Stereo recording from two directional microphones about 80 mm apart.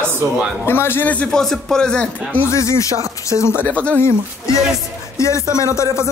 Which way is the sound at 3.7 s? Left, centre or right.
Centre.